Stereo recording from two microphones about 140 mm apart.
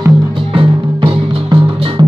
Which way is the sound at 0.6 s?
40° right (ahead or behind).